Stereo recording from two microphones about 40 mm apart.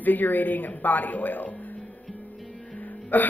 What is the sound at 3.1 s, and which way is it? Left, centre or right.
Speech, left.